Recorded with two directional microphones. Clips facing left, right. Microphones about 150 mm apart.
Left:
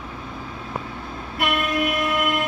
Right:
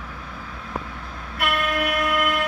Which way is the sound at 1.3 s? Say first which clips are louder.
Left 1 dB; 20° left (ahead or behind).